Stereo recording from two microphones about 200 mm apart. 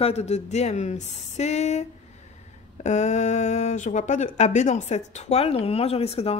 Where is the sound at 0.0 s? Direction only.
35° left (ahead or behind).